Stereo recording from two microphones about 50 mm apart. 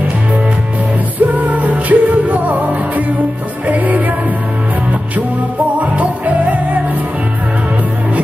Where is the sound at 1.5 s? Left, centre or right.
Right.